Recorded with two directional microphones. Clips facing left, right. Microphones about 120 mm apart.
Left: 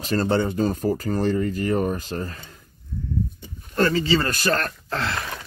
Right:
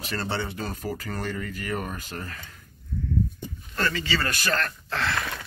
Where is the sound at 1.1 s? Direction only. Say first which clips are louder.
Left 10 dB; 30° left (ahead or behind).